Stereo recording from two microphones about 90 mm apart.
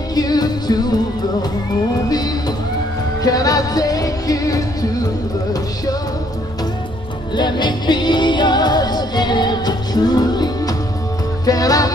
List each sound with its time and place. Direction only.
0.1 s music: 45° left (ahead or behind)
2.0 s music: 45° left (ahead or behind)
7.3 s music: 55° left (ahead or behind)